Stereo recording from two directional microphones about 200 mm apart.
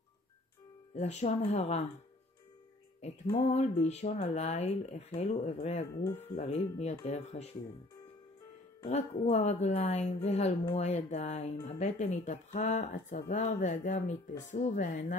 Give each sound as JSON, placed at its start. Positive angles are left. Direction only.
{"t": 0.9, "sound": "a woman's voice", "side_deg": 35}
{"t": 3.3, "sound": "a woman's voice", "side_deg": 35}
{"t": 8.8, "sound": "a woman's voice", "side_deg": 30}